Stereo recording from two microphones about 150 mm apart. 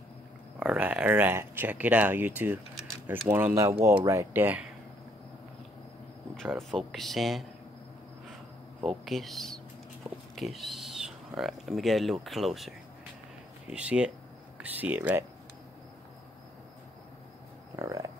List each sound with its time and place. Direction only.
0.6 s speech: 10° right (ahead or behind)
6.7 s speech: centre (ahead or behind)
8.8 s speech: centre (ahead or behind)
17.7 s a sound: 20° right (ahead or behind)